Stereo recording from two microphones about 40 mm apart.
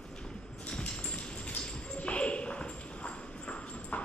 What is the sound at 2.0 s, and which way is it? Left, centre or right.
Clip-clop, left.